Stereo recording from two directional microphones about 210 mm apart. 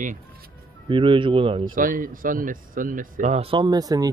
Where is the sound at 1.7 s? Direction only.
40° right (ahead or behind).